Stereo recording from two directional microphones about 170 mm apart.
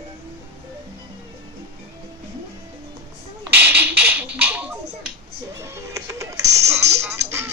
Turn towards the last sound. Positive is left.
turn(degrees=-15)  # may be behind; listen again after turning